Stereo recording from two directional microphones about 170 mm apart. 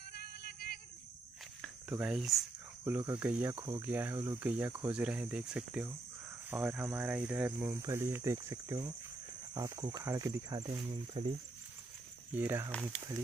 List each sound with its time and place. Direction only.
0.1 s music: 65° left (ahead or behind)
1.9 s speech: 5° right (ahead or behind)
2.8 s speech: 15° right (ahead or behind)
3.8 s speech: 10° right (ahead or behind); by 11.3 s 25° right (ahead or behind)
12.3 s speech: 10° right (ahead or behind)